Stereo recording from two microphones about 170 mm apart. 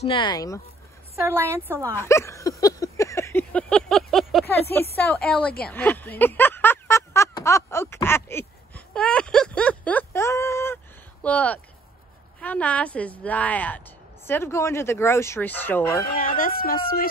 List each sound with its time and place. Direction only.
0.0 s speech: 30° left (ahead or behind)
1.2 s a woman's voice: 15° right (ahead or behind)
2.0 s a sound: 15° left (ahead or behind); by 4.5 s centre (ahead or behind)
4.5 s a woman's voice: 15° left (ahead or behind)
5.7 s a sound: 10° left (ahead or behind)
11.2 s a woman's voice: 10° left (ahead or behind)
16.2 s speech: 55° left (ahead or behind)